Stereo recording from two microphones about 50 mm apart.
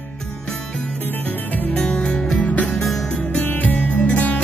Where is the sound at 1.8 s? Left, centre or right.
Centre.